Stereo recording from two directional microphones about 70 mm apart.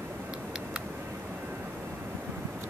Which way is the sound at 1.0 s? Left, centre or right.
Right.